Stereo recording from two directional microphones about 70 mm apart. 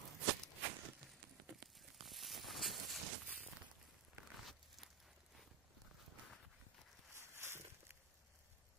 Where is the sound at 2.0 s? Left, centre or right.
Centre.